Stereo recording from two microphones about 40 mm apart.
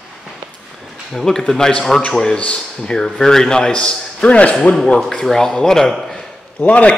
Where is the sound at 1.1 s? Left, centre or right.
Centre.